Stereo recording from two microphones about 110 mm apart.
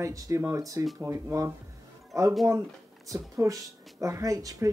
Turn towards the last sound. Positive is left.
turn(degrees=-30)  # may be behind; listen again after turning